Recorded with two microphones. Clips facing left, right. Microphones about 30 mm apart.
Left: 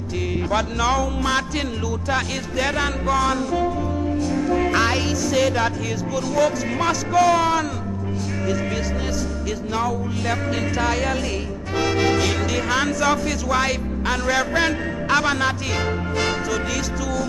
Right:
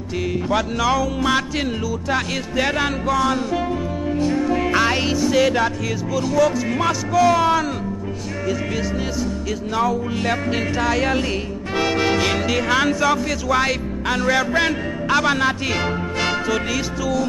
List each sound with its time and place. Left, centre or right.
0.5 s speech: centre
2.5 s speech: centre
4.5 s music: centre
5.3 s speech: centre
9.8 s speech: centre
11.0 s music: centre
11.8 s speech: centre
15.3 s music: centre